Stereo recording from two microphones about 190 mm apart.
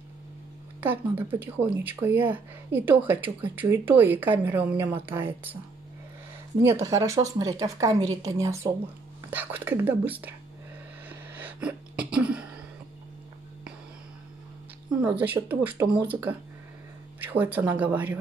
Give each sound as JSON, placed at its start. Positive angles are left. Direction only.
{"t": 0.7, "sound": "speech", "side_deg": -10}
{"t": 6.6, "sound": "speech", "side_deg": -15}
{"t": 11.1, "sound": "sneeze", "side_deg": -10}
{"t": 14.9, "sound": "speech", "side_deg": -5}